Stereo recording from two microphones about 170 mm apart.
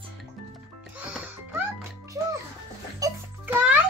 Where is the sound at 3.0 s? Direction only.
20° right (ahead or behind).